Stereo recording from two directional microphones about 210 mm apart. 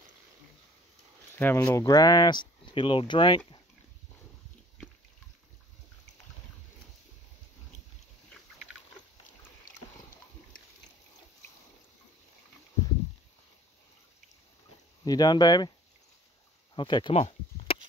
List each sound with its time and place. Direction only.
1.3 s speech: 10° left (ahead or behind)
15.0 s speech: 20° left (ahead or behind)
16.7 s a sound: 20° left (ahead or behind)